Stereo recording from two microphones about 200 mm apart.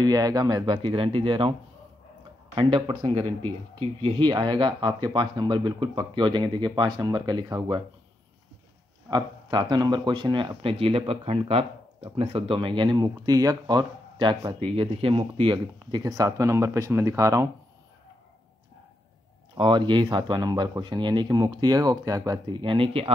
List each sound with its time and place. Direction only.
0.0 s speech: 20° right (ahead or behind)
2.5 s speech: 25° right (ahead or behind)
9.1 s speech: 20° right (ahead or behind)
19.5 s speech: 25° right (ahead or behind)